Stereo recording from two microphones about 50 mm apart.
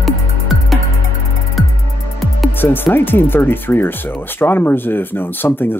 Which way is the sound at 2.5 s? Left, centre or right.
Left.